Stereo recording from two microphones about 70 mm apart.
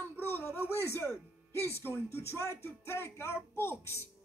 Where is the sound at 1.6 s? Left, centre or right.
Left.